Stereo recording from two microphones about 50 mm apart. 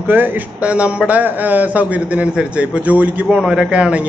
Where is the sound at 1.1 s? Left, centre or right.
Right.